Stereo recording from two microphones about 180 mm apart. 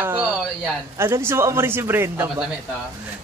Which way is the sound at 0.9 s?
15° right (ahead or behind).